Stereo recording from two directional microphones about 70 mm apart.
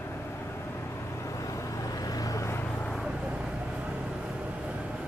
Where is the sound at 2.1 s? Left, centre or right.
Left.